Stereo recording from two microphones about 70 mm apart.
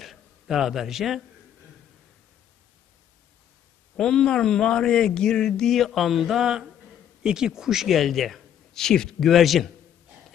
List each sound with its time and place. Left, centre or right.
0.0 s a man's voice: centre
3.9 s speech: centre